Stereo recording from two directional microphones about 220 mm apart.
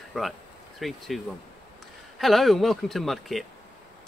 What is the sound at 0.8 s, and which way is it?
Speech, centre (ahead or behind).